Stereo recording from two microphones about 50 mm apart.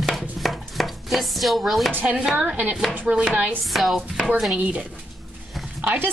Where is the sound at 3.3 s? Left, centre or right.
Right.